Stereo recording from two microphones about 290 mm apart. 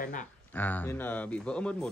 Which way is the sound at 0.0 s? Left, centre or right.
Left.